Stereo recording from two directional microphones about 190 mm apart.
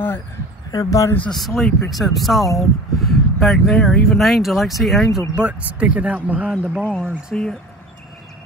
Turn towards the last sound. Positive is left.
turn(degrees=5)  # may be behind; listen again after turning